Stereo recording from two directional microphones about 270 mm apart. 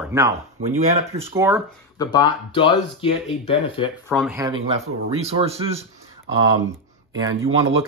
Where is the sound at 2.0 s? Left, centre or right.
Centre.